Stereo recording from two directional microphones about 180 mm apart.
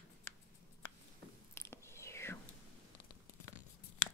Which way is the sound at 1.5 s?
15° left (ahead or behind).